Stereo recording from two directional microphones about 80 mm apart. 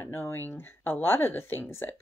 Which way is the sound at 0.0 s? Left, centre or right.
Left.